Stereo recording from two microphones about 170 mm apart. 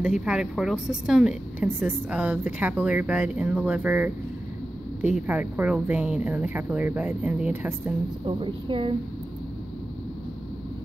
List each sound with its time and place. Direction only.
0.0 s speech: 5° right (ahead or behind)
5.1 s speech: 10° right (ahead or behind)
8.3 s a woman's voice: 30° right (ahead or behind)